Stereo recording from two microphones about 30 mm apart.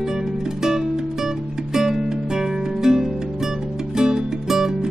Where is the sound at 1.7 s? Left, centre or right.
Centre.